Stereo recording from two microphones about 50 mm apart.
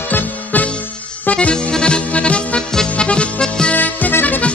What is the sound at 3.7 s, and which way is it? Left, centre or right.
Music, left.